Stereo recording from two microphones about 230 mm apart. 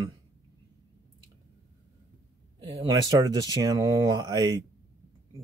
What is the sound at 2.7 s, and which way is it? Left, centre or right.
Speech, centre.